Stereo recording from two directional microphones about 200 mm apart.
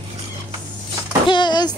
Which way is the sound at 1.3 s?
20° left (ahead or behind).